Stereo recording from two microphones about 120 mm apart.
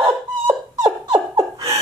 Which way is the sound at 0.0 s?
30° right (ahead or behind).